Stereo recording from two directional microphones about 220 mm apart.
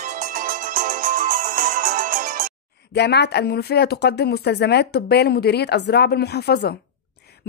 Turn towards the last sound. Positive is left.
turn(degrees=45)  # may be behind; listen again after turning